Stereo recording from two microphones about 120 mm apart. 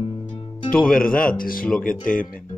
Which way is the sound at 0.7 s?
5° left (ahead or behind).